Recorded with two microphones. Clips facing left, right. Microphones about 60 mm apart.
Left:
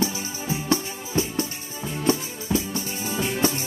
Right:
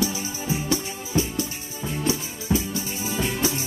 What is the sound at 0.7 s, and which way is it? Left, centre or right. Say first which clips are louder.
Music: left 1 dB; left.